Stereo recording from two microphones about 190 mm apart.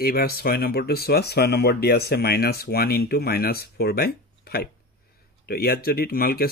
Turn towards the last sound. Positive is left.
turn(degrees=55)  # may be behind; listen again after turning